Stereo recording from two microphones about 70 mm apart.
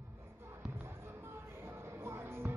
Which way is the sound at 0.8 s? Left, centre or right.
Right.